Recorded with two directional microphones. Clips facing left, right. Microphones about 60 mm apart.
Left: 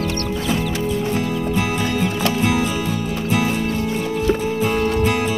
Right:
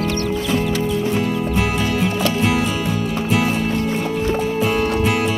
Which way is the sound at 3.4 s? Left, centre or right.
Right.